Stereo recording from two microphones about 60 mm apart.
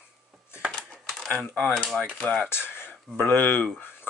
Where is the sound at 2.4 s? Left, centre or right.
Left.